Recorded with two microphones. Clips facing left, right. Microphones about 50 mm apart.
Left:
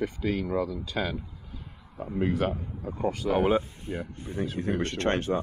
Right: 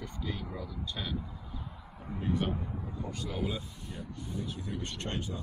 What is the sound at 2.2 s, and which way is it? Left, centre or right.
Speech, left.